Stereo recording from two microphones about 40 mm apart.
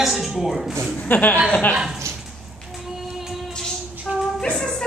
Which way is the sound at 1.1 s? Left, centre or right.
Left.